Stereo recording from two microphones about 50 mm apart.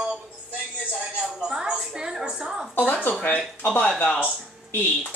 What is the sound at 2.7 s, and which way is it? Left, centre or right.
Speech, left.